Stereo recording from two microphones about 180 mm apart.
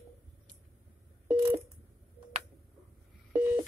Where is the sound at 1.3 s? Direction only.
30° right (ahead or behind).